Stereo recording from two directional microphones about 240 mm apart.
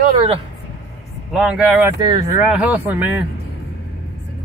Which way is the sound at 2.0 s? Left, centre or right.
Centre.